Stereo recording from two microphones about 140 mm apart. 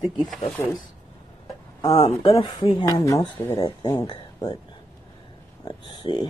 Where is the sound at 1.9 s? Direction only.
40° left (ahead or behind).